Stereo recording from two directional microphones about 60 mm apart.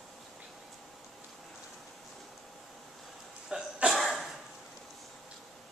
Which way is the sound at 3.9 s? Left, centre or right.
Centre.